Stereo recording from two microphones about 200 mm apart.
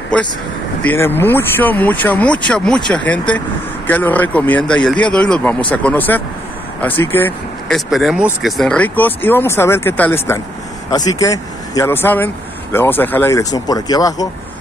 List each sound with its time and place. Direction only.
0.8 s speech: 10° left (ahead or behind)
7.7 s speech: centre (ahead or behind); by 14.2 s 20° left (ahead or behind)